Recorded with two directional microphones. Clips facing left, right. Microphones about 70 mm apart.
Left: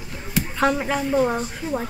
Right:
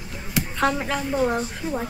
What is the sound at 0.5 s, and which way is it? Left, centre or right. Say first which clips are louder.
A woman's voice: left 2 dB; centre.